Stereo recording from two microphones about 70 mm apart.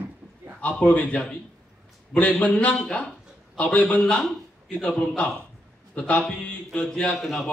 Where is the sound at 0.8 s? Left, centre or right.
Centre.